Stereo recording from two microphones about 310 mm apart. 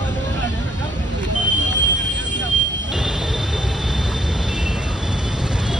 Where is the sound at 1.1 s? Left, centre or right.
Right.